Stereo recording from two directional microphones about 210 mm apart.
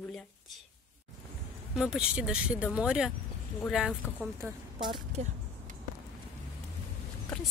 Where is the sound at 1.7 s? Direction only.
5° right (ahead or behind).